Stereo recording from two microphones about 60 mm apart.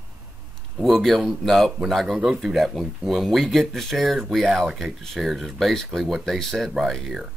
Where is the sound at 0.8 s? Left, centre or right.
Centre.